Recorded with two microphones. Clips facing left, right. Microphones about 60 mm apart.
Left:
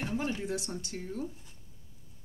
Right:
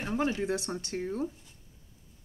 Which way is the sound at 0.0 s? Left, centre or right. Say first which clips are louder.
Right 4 dB; right.